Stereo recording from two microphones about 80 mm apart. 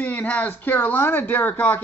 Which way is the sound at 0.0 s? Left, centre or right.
Centre.